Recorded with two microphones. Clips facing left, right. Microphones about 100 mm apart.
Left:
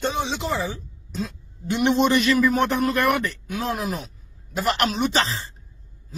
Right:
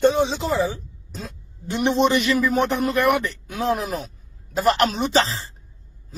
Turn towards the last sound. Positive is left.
turn(degrees=-30)  # may be behind; listen again after turning